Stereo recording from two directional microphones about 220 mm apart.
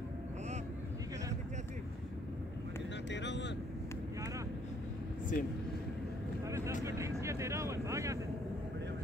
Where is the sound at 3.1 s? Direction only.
55° left (ahead or behind).